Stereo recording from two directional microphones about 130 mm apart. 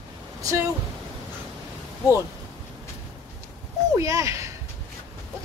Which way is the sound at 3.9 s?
25° right (ahead or behind).